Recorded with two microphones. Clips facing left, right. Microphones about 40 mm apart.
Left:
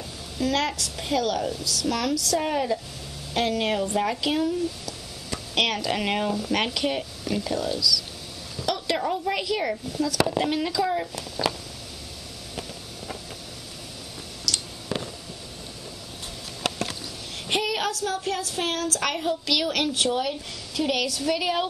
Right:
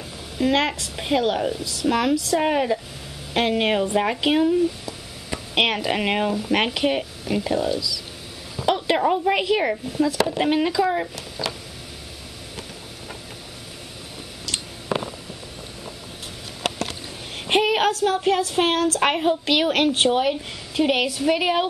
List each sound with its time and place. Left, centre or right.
0.4 s speech: right
11.1 s speech: centre
14.9 s a sound: centre
17.5 s speech: right